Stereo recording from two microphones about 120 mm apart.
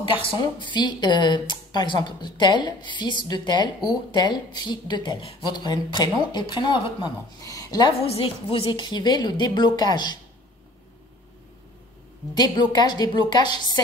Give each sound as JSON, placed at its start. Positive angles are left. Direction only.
{"t": 0.0, "sound": "speech", "side_deg": 45}
{"t": 8.1, "sound": "speech", "side_deg": 50}
{"t": 12.4, "sound": "speech", "side_deg": 35}